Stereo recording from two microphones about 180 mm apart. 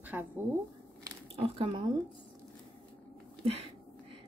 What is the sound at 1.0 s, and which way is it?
Squish, 30° right (ahead or behind).